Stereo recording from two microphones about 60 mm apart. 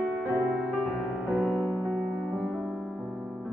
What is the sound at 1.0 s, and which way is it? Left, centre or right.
Music, centre.